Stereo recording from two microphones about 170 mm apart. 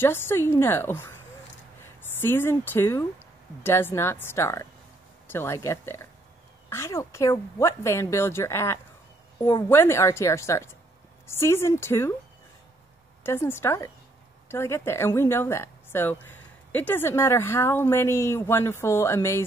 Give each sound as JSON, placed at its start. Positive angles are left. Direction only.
{"t": 0.0, "sound": "a woman's voice", "side_deg": 15}
{"t": 2.1, "sound": "a woman's voice", "side_deg": 15}
{"t": 13.2, "sound": "a woman's voice", "side_deg": 15}